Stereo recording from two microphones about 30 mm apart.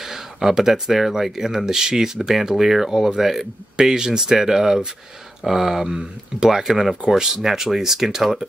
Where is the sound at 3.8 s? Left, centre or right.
Right.